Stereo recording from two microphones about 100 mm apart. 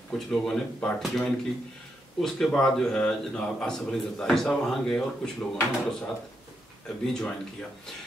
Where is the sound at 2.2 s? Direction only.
5° left (ahead or behind).